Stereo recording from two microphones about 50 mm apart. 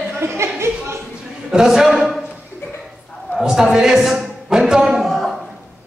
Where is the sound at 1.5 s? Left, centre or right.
Centre.